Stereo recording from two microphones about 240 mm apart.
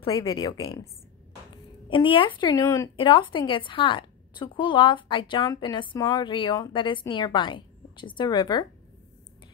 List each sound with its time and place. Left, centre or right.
0.0 s speech: left
1.9 s speech: left